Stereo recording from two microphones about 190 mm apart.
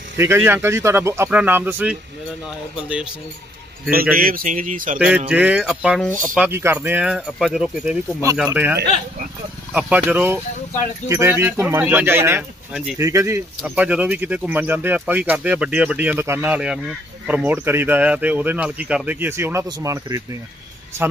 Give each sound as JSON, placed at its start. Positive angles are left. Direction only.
{"t": 0.2, "sound": "speech", "side_deg": -10}
{"t": 3.9, "sound": "speech", "side_deg": -50}
{"t": 4.9, "sound": "speech", "side_deg": -5}
{"t": 9.8, "sound": "speech", "side_deg": -5}
{"t": 13.6, "sound": "speech", "side_deg": -5}